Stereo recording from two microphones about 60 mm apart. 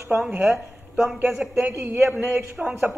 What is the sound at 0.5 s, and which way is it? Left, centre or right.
Speech, centre.